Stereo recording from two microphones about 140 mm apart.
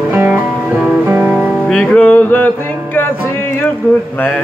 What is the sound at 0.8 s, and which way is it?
Music, 10° right (ahead or behind).